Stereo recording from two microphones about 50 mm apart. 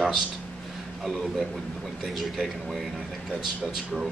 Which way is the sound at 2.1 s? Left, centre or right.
Centre.